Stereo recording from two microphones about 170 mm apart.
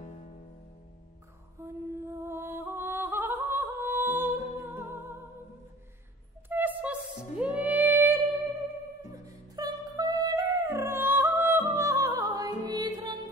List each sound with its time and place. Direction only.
1.6 s music: 15° right (ahead or behind)
6.5 s a sound: 10° right (ahead or behind)
7.3 s music: 10° right (ahead or behind)
9.1 s music: 20° right (ahead or behind)